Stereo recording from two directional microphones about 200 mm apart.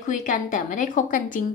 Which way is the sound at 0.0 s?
40° left (ahead or behind).